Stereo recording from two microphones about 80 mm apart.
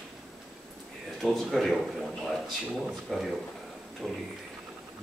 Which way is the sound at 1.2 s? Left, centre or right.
Centre.